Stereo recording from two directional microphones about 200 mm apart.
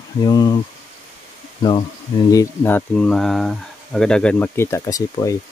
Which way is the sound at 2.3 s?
15° left (ahead or behind).